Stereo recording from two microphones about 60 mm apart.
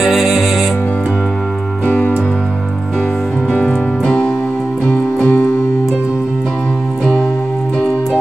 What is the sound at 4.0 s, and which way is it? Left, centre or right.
Music, centre.